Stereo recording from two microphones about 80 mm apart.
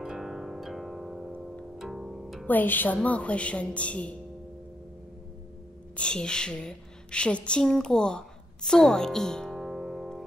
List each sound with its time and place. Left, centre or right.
0.0 s music: centre
2.4 s a woman's voice: left
5.9 s a woman's voice: centre
9.6 s music: centre